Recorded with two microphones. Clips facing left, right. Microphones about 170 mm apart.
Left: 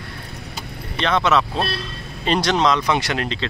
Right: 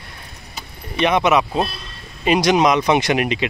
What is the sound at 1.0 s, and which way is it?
Speech, 15° right (ahead or behind).